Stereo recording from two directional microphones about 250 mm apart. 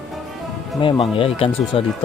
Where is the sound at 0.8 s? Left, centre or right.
Left.